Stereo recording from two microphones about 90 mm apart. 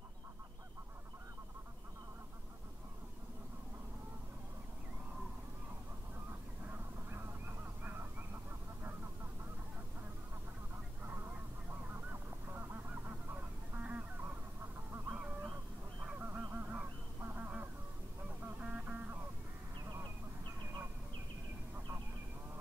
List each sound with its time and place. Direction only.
6.7 s honk: 25° right (ahead or behind)
7.8 s goose: 20° right (ahead or behind)
11.9 s goose: 20° right (ahead or behind)
16.2 s a sound: 20° right (ahead or behind)
16.5 s goose: 20° right (ahead or behind)
18.4 s music: 10° right (ahead or behind)